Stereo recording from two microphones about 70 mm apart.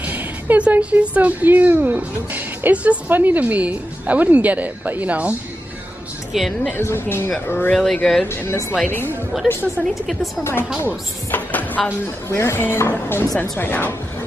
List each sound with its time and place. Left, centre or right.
0.0 s music: right
1.1 s a woman's voice: right
6.3 s a woman's voice: centre
6.8 s speech: left
7.7 s speech: centre
8.3 s speech: left
9.8 s a woman's voice: centre
11.3 s speech: left
12.3 s speech: left